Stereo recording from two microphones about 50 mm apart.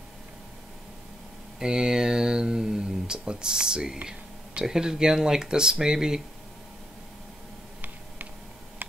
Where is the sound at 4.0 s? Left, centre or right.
Right.